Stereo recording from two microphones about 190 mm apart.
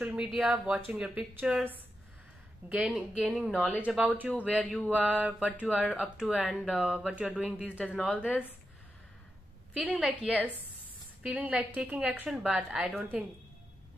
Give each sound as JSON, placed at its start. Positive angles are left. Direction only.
{"t": 0.0, "sound": "a woman's voice", "side_deg": -5}
{"t": 9.8, "sound": "speech", "side_deg": -5}
{"t": 10.3, "sound": "a woman's voice", "side_deg": 10}
{"t": 11.2, "sound": "a woman's voice", "side_deg": -5}